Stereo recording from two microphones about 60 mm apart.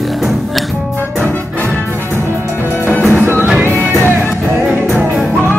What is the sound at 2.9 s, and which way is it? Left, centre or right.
Music, left.